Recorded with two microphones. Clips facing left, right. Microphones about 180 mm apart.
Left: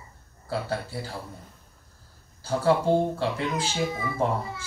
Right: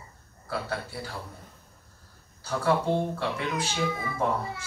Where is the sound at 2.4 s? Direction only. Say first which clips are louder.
Left 3 dB; 30° left (ahead or behind).